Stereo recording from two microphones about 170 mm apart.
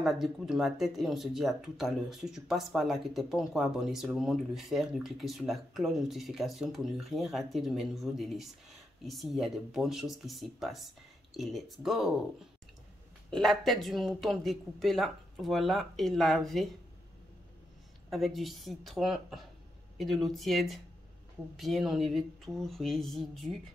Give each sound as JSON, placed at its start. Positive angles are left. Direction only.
{"t": 0.0, "sound": "speech", "side_deg": 0}
{"t": 13.3, "sound": "speech", "side_deg": 0}
{"t": 18.1, "sound": "speech", "side_deg": 0}